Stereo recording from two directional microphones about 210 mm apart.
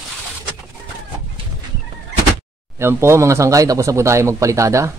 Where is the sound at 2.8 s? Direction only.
10° right (ahead or behind).